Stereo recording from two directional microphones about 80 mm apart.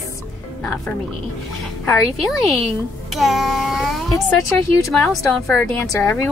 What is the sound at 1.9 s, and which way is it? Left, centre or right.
A woman's voice, centre.